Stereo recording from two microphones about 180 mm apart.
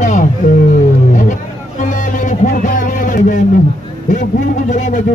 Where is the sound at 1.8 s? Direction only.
45° left (ahead or behind).